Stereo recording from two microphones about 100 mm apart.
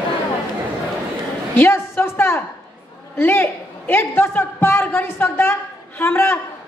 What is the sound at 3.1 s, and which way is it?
A man's voice, 20° left (ahead or behind).